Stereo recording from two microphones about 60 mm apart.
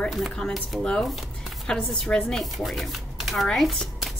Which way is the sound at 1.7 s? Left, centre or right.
Centre.